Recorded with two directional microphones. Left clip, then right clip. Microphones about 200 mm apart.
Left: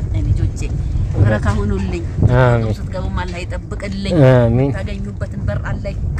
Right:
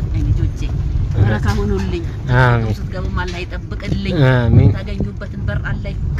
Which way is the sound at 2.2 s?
10° left (ahead or behind).